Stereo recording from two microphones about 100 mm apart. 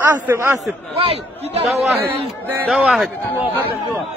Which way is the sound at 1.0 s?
75° right (ahead or behind).